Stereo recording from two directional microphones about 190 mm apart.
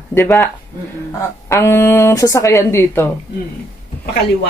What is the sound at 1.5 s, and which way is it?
Speech, 15° left (ahead or behind).